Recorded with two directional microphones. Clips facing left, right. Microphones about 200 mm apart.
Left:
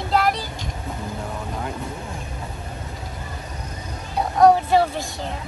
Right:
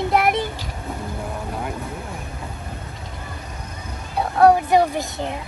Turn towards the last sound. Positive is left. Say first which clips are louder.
# right 3 dB
turn(degrees=-20)  # may be behind; listen again after turning